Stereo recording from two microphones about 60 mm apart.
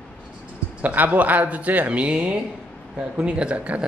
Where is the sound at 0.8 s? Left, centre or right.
Right.